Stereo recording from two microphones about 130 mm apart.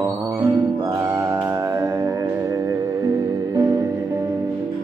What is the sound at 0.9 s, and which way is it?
Music, 20° right (ahead or behind).